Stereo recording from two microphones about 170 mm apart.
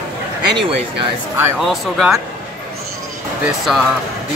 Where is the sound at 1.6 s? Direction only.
Centre (ahead or behind).